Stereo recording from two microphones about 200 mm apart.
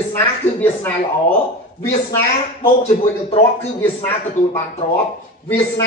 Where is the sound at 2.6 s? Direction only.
35° left (ahead or behind).